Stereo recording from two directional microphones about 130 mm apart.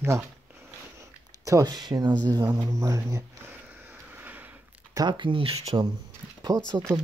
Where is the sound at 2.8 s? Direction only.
25° right (ahead or behind).